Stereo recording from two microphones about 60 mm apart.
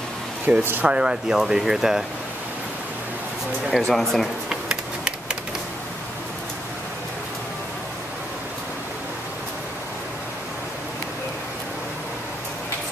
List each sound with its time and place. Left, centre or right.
0.5 s speech: right
1.4 s speech: centre
3.7 s speech: centre
4.5 s a sound: centre